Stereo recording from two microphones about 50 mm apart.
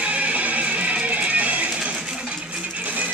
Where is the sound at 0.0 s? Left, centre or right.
Right.